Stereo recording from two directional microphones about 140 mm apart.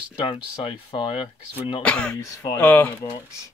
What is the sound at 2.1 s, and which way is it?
Speech, 25° left (ahead or behind).